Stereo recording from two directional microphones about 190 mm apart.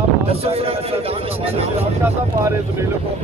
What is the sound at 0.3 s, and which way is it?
A man's voice, 30° right (ahead or behind).